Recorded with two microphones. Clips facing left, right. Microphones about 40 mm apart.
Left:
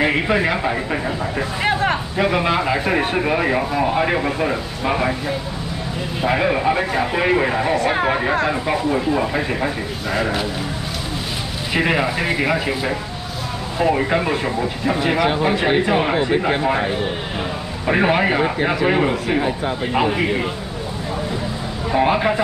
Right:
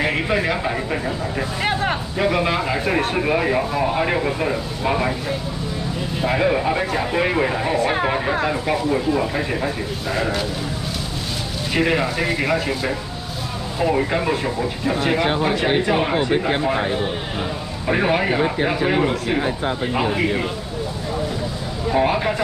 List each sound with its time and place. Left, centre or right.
0.0 s speech: centre
1.6 s speech: centre
6.2 s speech: centre
11.7 s speech: centre
15.1 s speech: centre
15.4 s speech: centre
21.9 s speech: centre